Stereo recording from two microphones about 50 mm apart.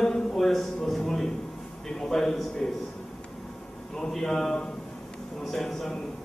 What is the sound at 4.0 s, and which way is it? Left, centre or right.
Speech, centre.